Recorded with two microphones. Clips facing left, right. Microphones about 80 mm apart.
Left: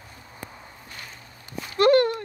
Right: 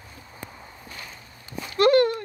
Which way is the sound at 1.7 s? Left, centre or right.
Left.